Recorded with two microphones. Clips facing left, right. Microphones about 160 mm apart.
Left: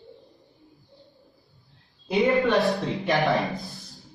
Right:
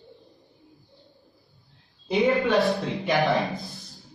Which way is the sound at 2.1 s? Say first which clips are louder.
Even; centre (ahead or behind).